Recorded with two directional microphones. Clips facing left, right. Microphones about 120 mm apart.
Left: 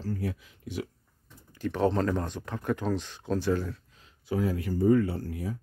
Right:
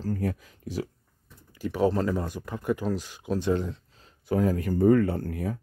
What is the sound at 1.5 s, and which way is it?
Speech, 10° right (ahead or behind).